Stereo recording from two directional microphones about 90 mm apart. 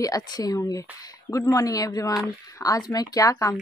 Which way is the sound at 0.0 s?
45° left (ahead or behind).